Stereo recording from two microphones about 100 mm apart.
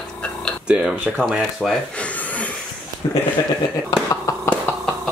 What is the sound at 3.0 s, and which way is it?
Speech, 45° left (ahead or behind).